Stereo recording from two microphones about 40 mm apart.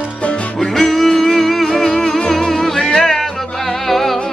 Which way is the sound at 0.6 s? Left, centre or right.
Centre.